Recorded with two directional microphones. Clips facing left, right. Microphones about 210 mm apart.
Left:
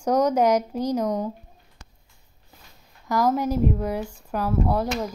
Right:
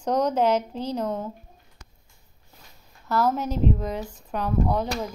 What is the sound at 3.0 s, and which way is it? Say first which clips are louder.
Speech: left 2 dB; 15° left (ahead or behind).